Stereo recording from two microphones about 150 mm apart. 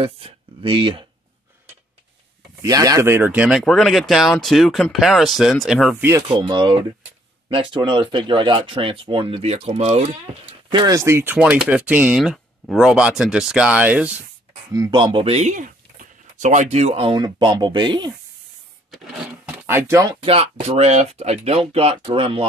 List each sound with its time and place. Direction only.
0.0 s speech: 35° right (ahead or behind)
2.6 s speech: 25° right (ahead or behind); by 6.0 s 5° right (ahead or behind)
6.2 s speech: 30° right (ahead or behind); by 10.0 s 45° right (ahead or behind)
10.7 s speech: 25° right (ahead or behind); by 14.1 s 10° right (ahead or behind)
14.7 s speech: 25° right (ahead or behind)
18.9 s speech: 5° right (ahead or behind); by 20.2 s 20° right (ahead or behind)
20.2 s speech: 45° right (ahead or behind)